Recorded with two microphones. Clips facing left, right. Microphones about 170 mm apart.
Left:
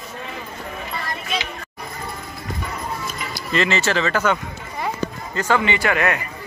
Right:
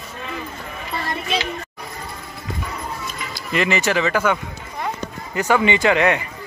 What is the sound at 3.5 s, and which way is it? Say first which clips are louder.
Speech: right 1 dB; 15° right (ahead or behind).